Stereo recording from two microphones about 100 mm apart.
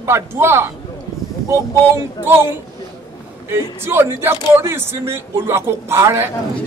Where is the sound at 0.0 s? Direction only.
25° right (ahead or behind).